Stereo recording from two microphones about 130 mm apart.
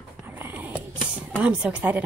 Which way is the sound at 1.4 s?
10° right (ahead or behind).